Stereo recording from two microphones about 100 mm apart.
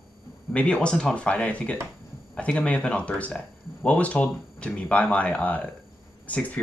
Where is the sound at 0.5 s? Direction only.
10° left (ahead or behind).